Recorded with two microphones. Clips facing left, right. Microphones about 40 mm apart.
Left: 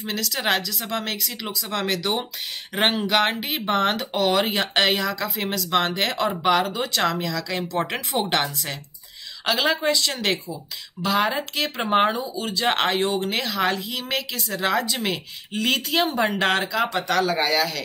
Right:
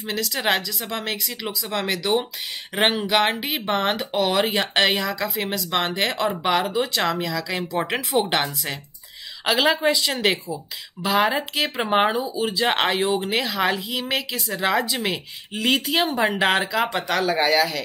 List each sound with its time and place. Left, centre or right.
0.0 s speech: centre